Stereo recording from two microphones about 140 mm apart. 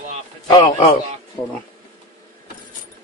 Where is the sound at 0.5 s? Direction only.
50° left (ahead or behind).